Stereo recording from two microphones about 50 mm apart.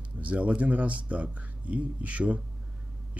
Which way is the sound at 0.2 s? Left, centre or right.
Right.